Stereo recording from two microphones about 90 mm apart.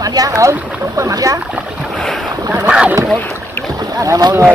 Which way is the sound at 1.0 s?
40° right (ahead or behind).